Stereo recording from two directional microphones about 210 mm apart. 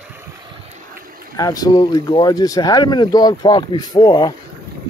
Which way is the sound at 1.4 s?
15° left (ahead or behind).